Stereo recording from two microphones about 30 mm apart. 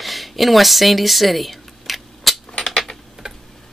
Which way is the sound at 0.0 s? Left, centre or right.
Centre.